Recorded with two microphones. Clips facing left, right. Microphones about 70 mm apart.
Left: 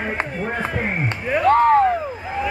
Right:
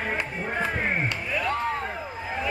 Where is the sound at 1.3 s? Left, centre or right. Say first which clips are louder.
Left 16 dB; left.